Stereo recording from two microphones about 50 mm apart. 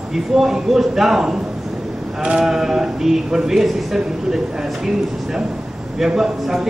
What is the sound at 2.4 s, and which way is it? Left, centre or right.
A man's voice, centre.